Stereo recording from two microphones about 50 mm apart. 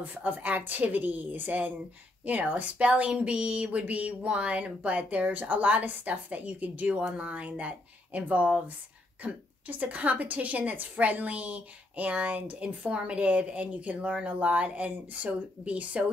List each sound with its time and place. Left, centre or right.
0.0 s a woman's voice: right